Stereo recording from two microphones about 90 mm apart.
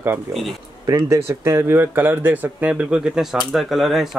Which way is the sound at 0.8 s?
35° right (ahead or behind).